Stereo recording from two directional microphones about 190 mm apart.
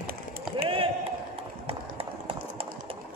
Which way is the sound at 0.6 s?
30° right (ahead or behind).